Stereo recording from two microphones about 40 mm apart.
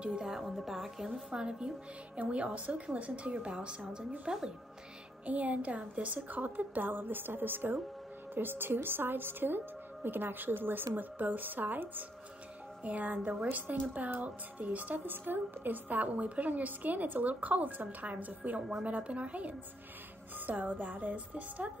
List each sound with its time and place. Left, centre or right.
0.2 s speech: centre
1.3 s a woman's voice: centre
2.1 s a woman's voice: right
4.3 s a woman's voice: right
5.2 s a woman's voice: right
15.0 s a woman's voice: right
20.3 s a woman's voice: right